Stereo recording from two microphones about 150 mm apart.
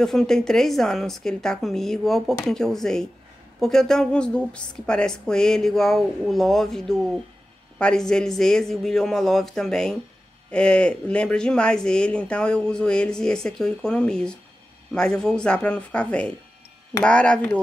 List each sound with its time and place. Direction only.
0.0 s speech: centre (ahead or behind)